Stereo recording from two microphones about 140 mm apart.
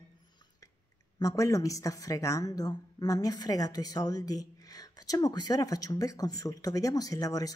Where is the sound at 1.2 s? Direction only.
25° left (ahead or behind).